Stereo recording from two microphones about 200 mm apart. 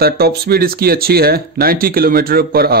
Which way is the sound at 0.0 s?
50° right (ahead or behind).